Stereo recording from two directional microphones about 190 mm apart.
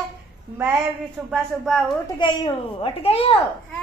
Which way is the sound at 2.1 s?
25° left (ahead or behind).